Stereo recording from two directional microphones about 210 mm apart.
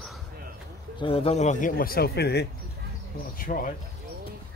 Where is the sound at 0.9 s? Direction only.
25° left (ahead or behind).